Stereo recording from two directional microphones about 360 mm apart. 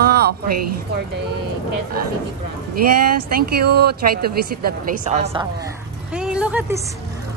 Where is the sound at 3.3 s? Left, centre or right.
Right.